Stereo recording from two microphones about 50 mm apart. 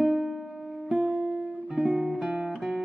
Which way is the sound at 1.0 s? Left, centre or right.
Right.